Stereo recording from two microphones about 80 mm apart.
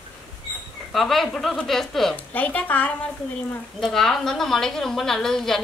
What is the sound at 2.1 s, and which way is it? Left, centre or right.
Speech, centre.